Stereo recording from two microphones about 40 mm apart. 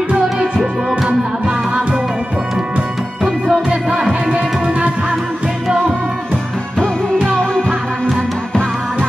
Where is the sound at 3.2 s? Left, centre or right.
Right.